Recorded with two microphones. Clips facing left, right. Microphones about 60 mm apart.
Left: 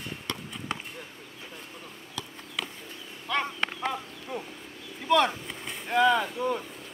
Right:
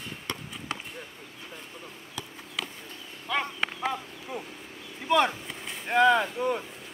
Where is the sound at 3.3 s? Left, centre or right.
Centre.